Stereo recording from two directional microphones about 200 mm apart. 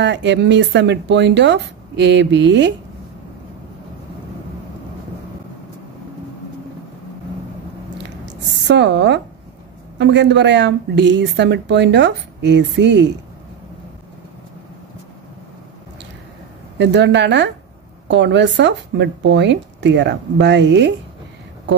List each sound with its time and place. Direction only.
0.0 s a woman's voice: 60° right (ahead or behind)
8.6 s a woman's voice: 60° right (ahead or behind)
16.7 s a woman's voice: 60° right (ahead or behind)